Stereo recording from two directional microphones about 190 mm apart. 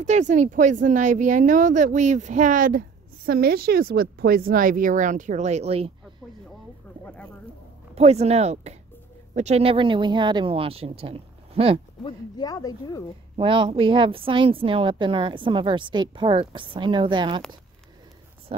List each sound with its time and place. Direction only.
0.0 s a woman's voice: 40° right (ahead or behind)
7.9 s a woman's voice: 35° right (ahead or behind)
12.0 s speech: 20° left (ahead or behind)
13.4 s a woman's voice: 25° right (ahead or behind)